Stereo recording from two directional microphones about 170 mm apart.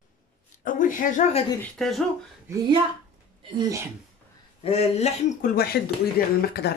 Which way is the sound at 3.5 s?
15° right (ahead or behind).